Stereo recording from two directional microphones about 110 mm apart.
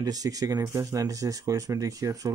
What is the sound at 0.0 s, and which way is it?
Speech, 35° right (ahead or behind).